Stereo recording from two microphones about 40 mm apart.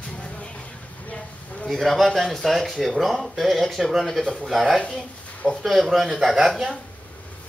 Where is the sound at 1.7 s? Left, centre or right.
Centre.